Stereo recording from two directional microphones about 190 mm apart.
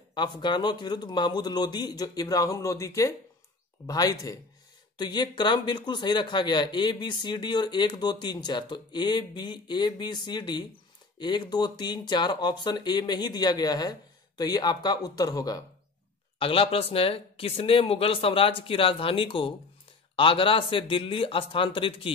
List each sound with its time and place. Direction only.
0.1 s speech: 25° left (ahead or behind)
16.3 s speech: 30° left (ahead or behind)